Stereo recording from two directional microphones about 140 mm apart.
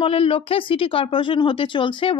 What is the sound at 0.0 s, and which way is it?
Speech, 40° left (ahead or behind).